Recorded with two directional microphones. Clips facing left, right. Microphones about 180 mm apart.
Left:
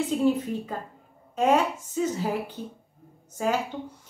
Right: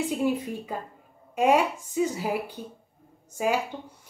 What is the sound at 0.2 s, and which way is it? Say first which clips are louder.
A woman's voice: left 3 dB; 10° right (ahead or behind).